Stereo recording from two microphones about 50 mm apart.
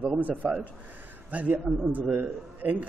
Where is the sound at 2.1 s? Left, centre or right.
Right.